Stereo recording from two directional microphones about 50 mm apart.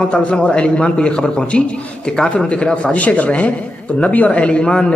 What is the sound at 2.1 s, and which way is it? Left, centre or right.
Speech, centre.